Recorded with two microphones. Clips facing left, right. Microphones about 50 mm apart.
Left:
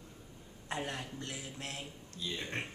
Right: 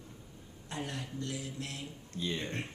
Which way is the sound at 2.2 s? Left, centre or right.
Right.